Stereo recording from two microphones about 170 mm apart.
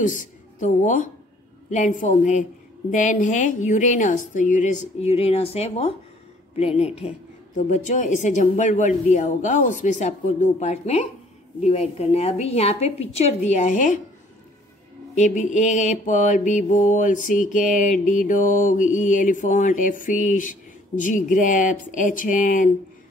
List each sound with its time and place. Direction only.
0.0 s a woman's voice: 50° left (ahead or behind)
1.7 s mantra: 50° left (ahead or behind)
6.5 s a woman's voice: 35° left (ahead or behind)
7.5 s mantra: 45° left (ahead or behind)
11.6 s a woman's voice: 40° left (ahead or behind)
15.1 s mantra: 45° left (ahead or behind)